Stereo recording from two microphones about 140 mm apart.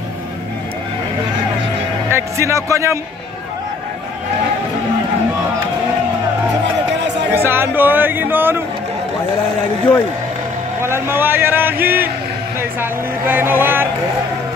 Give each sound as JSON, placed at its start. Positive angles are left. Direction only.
{"t": 2.0, "sound": "speech", "side_deg": -20}
{"t": 7.3, "sound": "a man's voice", "side_deg": -15}
{"t": 10.8, "sound": "a man's voice", "side_deg": -15}